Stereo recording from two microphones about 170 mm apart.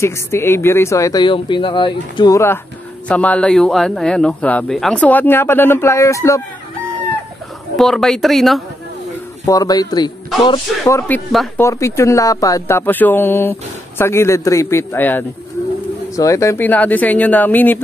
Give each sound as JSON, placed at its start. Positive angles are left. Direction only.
{"t": 0.0, "sound": "speech", "side_deg": 15}
{"t": 7.7, "sound": "a man's voice", "side_deg": 0}
{"t": 9.5, "sound": "speech", "side_deg": 20}